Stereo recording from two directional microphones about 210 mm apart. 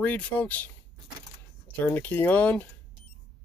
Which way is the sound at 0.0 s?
5° left (ahead or behind).